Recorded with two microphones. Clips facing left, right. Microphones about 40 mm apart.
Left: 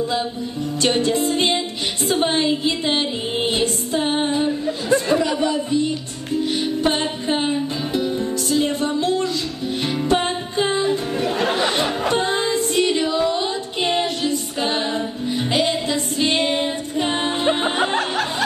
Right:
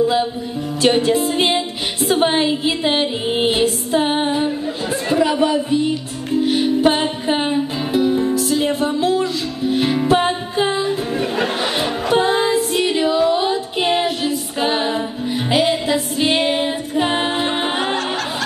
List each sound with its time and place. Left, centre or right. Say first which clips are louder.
0.0 s music: right 5 dB; centre
5.2 s speech: right 4 dB; centre
6.4 s music: right 6 dB; centre